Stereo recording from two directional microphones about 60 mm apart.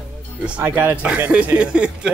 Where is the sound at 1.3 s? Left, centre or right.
Right.